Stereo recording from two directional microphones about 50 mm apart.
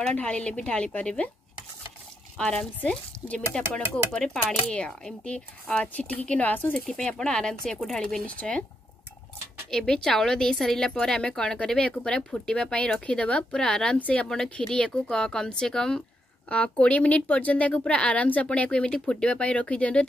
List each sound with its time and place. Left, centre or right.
0.1 s speech: left
2.3 s a woman's voice: centre; by 6.8 s left
6.9 s a woman's voice: centre
8.4 s speech: left
9.7 s a woman's voice: centre
13.6 s a woman's voice: centre
13.9 s speech: left
14.3 s a woman's voice: centre
16.4 s speech: left